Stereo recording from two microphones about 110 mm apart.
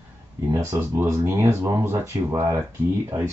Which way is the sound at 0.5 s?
25° right (ahead or behind).